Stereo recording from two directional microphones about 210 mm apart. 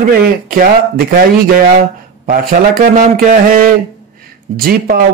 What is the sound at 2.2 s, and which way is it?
Speech, 40° right (ahead or behind).